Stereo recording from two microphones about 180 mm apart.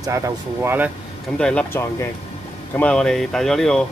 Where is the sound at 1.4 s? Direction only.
5° left (ahead or behind).